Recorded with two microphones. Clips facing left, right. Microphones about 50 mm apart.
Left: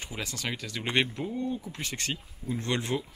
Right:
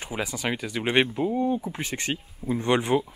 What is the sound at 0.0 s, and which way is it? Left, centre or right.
A man's voice, centre.